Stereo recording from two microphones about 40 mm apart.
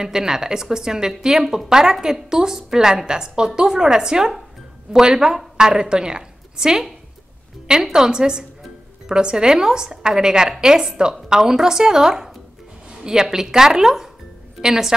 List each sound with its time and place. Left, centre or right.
0.0 s a woman's voice: centre